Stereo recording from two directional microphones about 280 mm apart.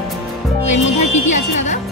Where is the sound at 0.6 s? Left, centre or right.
Left.